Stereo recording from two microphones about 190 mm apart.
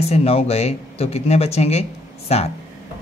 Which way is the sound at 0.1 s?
35° left (ahead or behind).